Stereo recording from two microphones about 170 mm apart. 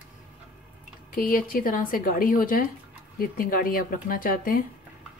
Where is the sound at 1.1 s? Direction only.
55° left (ahead or behind).